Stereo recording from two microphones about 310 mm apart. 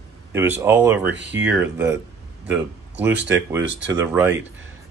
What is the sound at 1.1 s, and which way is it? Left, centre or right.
Speech, right.